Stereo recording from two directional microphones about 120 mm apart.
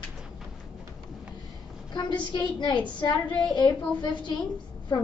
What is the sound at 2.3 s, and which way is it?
A woman's voice, 40° left (ahead or behind).